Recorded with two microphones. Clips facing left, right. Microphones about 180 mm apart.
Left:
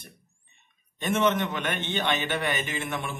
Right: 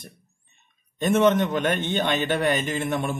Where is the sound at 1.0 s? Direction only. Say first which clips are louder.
Right 6 dB; 45° right (ahead or behind).